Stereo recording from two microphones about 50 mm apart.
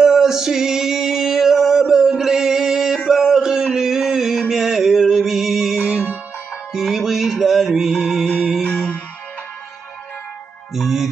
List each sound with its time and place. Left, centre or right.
0.0 s male singing: centre
3.1 s a sound: centre
3.7 s mantra: centre
6.7 s music: centre
10.7 s music: centre